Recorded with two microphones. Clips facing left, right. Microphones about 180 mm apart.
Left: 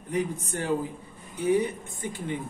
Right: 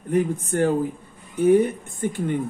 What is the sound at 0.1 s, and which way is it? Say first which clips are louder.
Speech: right 7 dB; 50° right (ahead or behind).